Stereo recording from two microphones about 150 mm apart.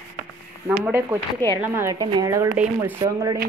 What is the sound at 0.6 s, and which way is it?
A woman's voice, 10° right (ahead or behind).